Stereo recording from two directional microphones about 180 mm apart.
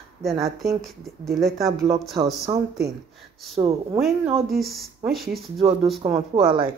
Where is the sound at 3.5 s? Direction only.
35° right (ahead or behind).